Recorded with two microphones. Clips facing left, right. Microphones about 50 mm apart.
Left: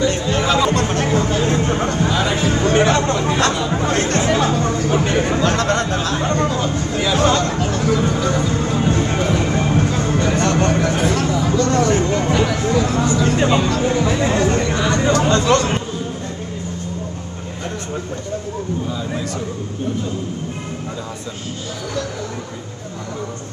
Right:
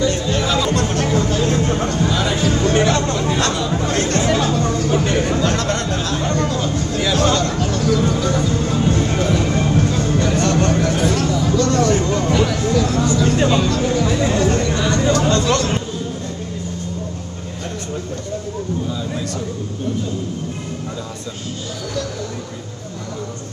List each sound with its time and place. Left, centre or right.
0.0 s chatter: left